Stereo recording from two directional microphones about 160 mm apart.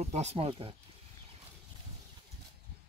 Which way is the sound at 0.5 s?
30° right (ahead or behind).